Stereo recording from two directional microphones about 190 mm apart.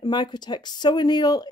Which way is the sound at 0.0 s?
25° left (ahead or behind).